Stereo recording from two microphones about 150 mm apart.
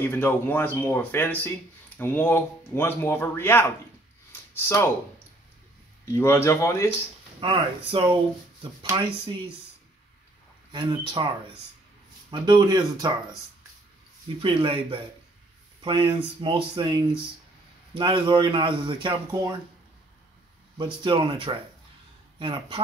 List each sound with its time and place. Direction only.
0.0 s speech: 15° left (ahead or behind)
4.3 s a sound: 15° left (ahead or behind)
6.1 s speech: 15° left (ahead or behind)
7.3 s speech: 35° right (ahead or behind)
10.7 s speech: 30° right (ahead or behind)
12.3 s speech: 30° right (ahead or behind)
14.4 s speech: 35° right (ahead or behind)
20.7 s speech: 30° right (ahead or behind)